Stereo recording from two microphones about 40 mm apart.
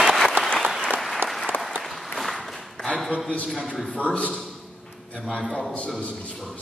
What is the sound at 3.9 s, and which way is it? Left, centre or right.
Speech, left.